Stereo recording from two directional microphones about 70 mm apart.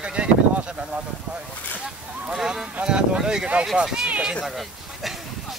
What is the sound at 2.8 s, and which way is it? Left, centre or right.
Speech, centre.